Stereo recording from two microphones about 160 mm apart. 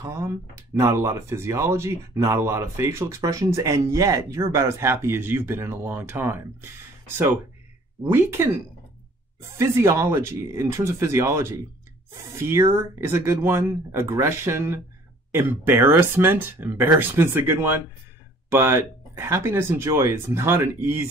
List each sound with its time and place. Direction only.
0.0 s speech: 20° right (ahead or behind)
9.6 s speech: 15° right (ahead or behind)